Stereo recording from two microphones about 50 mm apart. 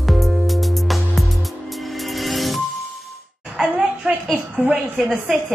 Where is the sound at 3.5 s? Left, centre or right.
Right.